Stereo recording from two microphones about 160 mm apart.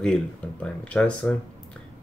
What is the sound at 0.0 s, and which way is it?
Speech, 5° left (ahead or behind).